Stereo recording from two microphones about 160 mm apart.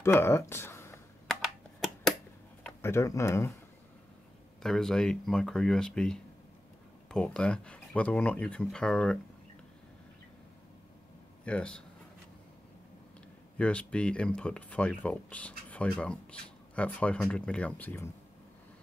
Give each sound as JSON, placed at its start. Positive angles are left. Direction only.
{"t": 0.0, "sound": "speech", "side_deg": 15}
{"t": 2.6, "sound": "speech", "side_deg": 15}
{"t": 4.6, "sound": "speech", "side_deg": 5}
{"t": 11.4, "sound": "speech", "side_deg": 5}
{"t": 13.6, "sound": "speech", "side_deg": 10}